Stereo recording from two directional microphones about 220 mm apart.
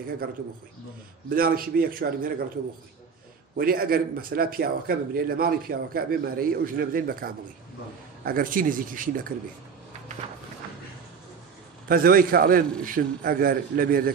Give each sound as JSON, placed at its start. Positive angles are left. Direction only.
{"t": 1.3, "sound": "a man's voice", "side_deg": -40}
{"t": 3.5, "sound": "a man's voice", "side_deg": -45}
{"t": 11.9, "sound": "a man's voice", "side_deg": -40}